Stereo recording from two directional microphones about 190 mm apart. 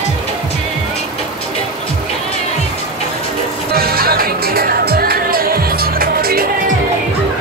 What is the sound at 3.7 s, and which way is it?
Music, 55° right (ahead or behind).